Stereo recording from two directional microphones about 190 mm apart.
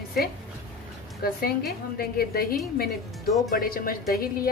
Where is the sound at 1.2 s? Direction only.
50° left (ahead or behind).